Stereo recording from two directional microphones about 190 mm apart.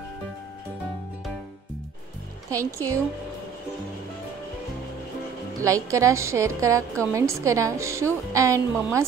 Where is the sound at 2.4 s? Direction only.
15° right (ahead or behind).